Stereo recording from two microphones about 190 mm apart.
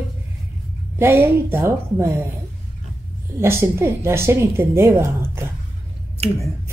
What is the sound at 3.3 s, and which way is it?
A woman's voice, 15° right (ahead or behind).